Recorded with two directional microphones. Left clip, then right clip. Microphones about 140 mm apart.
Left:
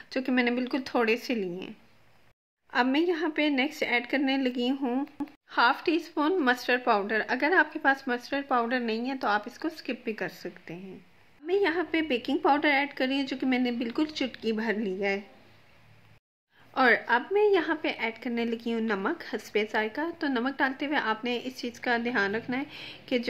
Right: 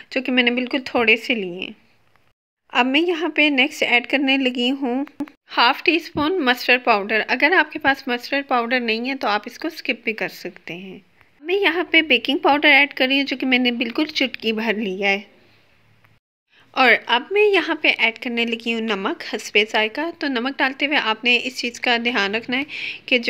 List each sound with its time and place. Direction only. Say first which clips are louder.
0.1 s a woman's voice: right 9 dB; 25° right (ahead or behind)
16.7 s a woman's voice: right 7 dB; 20° right (ahead or behind)
22.7 s a woman's voice: right 12 dB; 20° right (ahead or behind)